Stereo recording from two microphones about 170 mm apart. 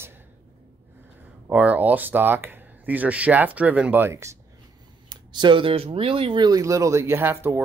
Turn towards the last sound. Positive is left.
turn(degrees=-15)  # may be behind; listen again after turning